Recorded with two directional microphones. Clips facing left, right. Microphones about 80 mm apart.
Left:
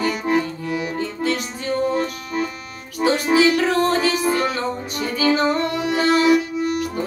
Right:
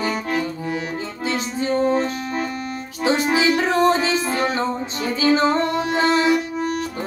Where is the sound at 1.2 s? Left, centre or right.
Right.